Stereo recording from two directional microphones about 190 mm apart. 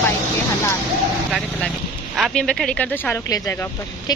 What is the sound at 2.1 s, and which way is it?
A woman's voice, centre (ahead or behind).